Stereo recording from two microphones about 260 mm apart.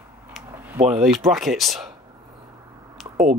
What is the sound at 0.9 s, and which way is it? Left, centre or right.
Speech, centre.